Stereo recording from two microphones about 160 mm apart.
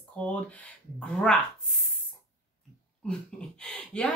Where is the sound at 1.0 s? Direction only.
5° left (ahead or behind).